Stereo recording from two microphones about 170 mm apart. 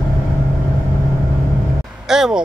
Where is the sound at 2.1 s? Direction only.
5° right (ahead or behind).